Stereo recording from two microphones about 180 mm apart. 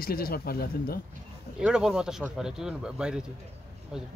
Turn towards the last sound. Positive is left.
turn(degrees=0)  # may be behind; listen again after turning